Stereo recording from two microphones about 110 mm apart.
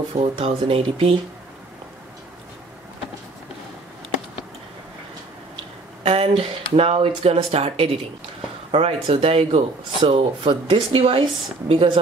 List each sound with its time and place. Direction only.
0.2 s speech: 60° right (ahead or behind)
6.0 s a sound: 60° right (ahead or behind)
6.8 s speech: 65° right (ahead or behind)